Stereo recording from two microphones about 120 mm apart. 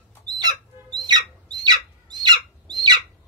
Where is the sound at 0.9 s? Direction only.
35° right (ahead or behind).